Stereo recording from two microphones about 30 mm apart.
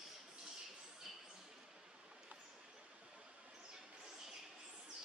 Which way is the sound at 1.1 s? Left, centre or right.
Centre.